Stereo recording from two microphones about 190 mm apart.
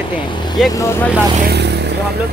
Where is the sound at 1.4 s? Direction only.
60° right (ahead or behind).